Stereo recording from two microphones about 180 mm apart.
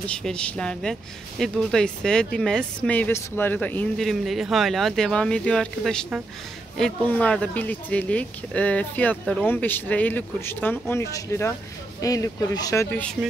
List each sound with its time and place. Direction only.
0.0 s speech: 5° left (ahead or behind)
9.2 s speech: centre (ahead or behind)
9.5 s speech: 10° left (ahead or behind)